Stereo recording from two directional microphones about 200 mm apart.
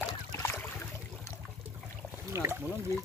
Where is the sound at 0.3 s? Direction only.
10° left (ahead or behind).